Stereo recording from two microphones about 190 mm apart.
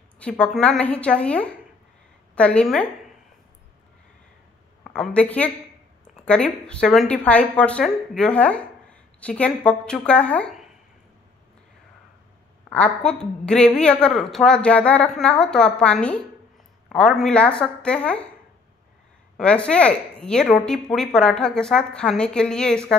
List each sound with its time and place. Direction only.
0.2 s a woman's voice: 5° left (ahead or behind)
4.8 s a woman's voice: centre (ahead or behind)
12.6 s a woman's voice: 5° left (ahead or behind)
19.3 s a woman's voice: 5° left (ahead or behind)